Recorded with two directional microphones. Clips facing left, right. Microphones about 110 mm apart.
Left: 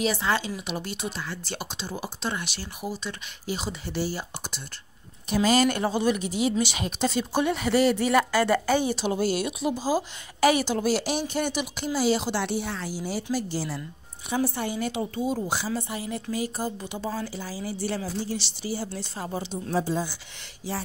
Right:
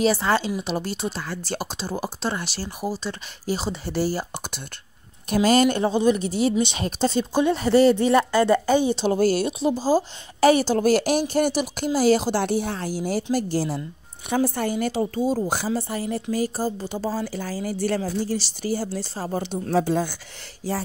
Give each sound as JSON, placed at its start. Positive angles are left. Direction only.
{"t": 0.0, "sound": "speech", "side_deg": -35}
{"t": 5.3, "sound": "speech", "side_deg": -50}
{"t": 5.7, "sound": "speech", "side_deg": -20}
{"t": 6.1, "sound": "speech", "side_deg": -35}
{"t": 9.0, "sound": "speech", "side_deg": -40}
{"t": 19.3, "sound": "speech", "side_deg": -55}
{"t": 20.6, "sound": "speech", "side_deg": -40}